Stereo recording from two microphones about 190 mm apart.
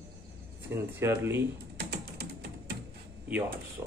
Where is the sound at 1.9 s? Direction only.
60° right (ahead or behind).